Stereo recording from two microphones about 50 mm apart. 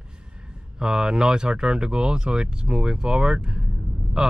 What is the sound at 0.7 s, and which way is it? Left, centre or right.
Speech, centre.